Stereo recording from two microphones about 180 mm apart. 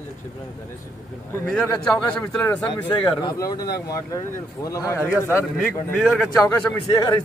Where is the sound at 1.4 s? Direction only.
5° left (ahead or behind).